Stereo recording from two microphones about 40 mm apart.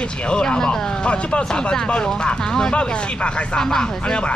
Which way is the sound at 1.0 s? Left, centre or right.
Left.